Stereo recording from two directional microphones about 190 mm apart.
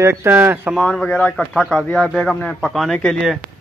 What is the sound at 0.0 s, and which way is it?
Speech, 15° right (ahead or behind).